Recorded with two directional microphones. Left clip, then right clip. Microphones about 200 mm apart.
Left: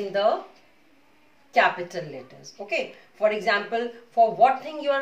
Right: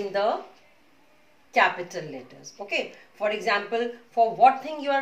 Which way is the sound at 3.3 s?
15° left (ahead or behind).